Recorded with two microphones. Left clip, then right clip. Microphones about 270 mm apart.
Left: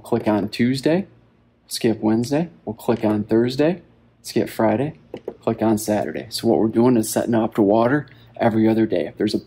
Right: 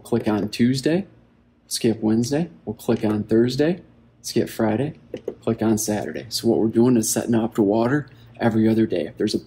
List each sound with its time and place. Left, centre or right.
0.0 s speech: left